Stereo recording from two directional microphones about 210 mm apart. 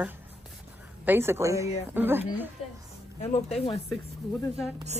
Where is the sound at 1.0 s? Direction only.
10° right (ahead or behind).